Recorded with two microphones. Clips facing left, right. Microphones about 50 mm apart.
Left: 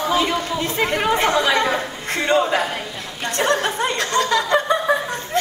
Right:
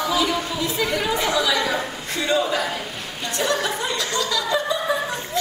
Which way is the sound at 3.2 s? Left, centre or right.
Left.